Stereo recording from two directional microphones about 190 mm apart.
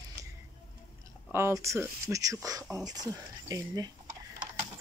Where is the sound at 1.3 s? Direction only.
15° right (ahead or behind).